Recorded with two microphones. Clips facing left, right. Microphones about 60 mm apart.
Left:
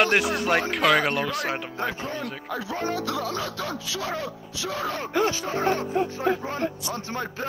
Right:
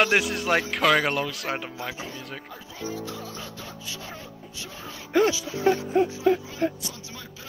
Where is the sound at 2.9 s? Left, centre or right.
Left.